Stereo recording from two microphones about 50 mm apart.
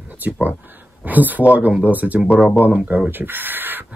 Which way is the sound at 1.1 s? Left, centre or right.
Right.